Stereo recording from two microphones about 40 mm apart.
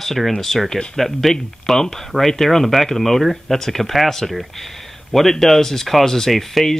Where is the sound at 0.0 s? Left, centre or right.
Centre.